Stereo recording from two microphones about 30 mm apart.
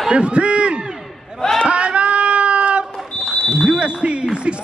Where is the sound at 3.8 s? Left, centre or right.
Right.